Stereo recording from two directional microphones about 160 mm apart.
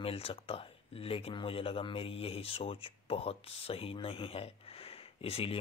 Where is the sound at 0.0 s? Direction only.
35° left (ahead or behind).